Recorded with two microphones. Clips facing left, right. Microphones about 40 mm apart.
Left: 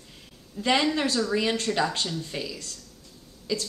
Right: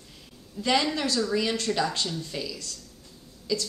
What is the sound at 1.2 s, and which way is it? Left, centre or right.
A woman's voice, centre.